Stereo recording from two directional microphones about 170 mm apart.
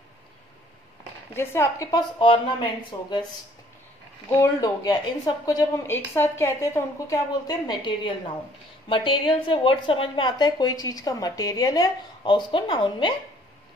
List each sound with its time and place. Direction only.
1.3 s speech: 15° left (ahead or behind)
4.4 s speech: 20° left (ahead or behind)